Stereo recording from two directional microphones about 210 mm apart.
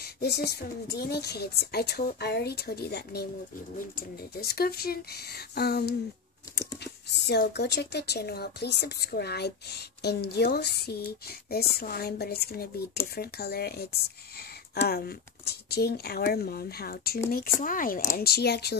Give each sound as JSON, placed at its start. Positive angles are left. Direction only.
{"t": 0.0, "sound": "speech", "side_deg": 50}
{"t": 4.4, "sound": "speech", "side_deg": 45}